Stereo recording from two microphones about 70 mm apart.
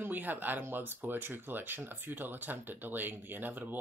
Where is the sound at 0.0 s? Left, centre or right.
Right.